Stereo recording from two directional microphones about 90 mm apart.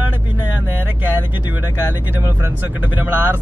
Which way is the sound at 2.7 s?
20° right (ahead or behind).